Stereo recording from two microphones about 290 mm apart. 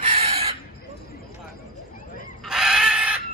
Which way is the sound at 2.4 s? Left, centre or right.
Centre.